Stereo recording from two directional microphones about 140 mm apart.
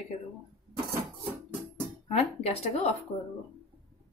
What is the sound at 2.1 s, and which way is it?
Speech, 50° left (ahead or behind).